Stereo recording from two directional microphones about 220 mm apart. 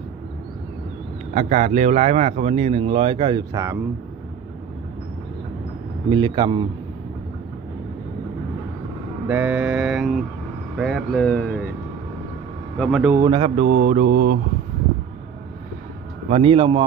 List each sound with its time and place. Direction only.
1.3 s speech: 30° right (ahead or behind)
6.0 s speech: 20° right (ahead or behind)
9.3 s mantra: 5° right (ahead or behind)
12.7 s mantra: centre (ahead or behind)
13.1 s speech: 20° right (ahead or behind)
13.7 s mantra: 35° right (ahead or behind)
16.3 s speech: 25° right (ahead or behind)